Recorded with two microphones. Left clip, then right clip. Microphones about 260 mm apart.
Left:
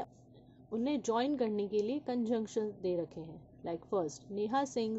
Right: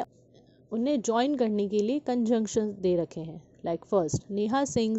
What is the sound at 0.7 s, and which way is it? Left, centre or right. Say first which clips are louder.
A woman's voice: right 7 dB; right.